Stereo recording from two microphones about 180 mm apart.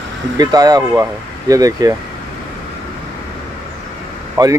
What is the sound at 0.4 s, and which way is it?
Speech, 20° right (ahead or behind).